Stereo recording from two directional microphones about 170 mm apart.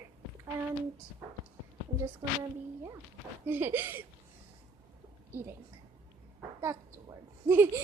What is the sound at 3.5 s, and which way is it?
Speech, 10° right (ahead or behind).